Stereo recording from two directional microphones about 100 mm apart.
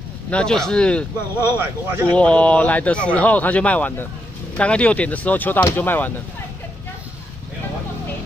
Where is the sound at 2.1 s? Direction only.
10° left (ahead or behind).